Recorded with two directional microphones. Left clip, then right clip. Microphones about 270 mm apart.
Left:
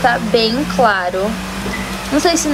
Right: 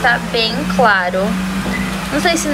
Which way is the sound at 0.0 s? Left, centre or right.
Left.